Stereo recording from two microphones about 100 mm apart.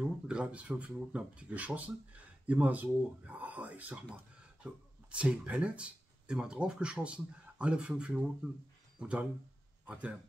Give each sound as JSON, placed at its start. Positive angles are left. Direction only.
{"t": 0.0, "sound": "speech", "side_deg": -10}